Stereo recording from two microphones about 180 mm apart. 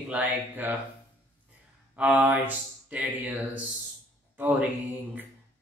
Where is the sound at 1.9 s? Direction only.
10° right (ahead or behind).